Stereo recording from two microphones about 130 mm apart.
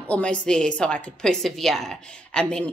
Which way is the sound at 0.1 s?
10° left (ahead or behind).